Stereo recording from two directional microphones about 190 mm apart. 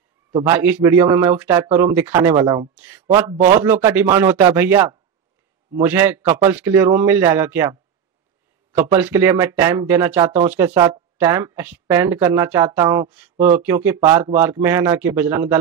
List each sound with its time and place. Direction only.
0.5 s speech: 10° right (ahead or behind)
8.7 s speech: 10° right (ahead or behind)